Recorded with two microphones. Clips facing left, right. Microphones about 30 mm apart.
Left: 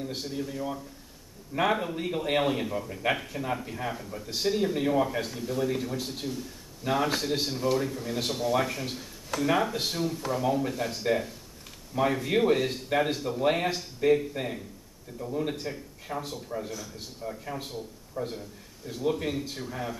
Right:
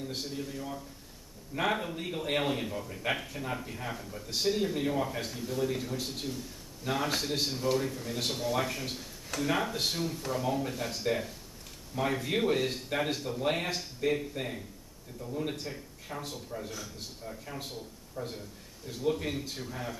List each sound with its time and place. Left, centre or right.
0.0 s a man's voice: centre